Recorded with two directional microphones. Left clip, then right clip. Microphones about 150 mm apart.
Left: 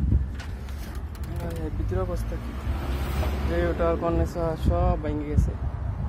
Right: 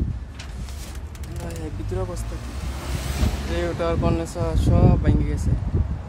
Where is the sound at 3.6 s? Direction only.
15° right (ahead or behind).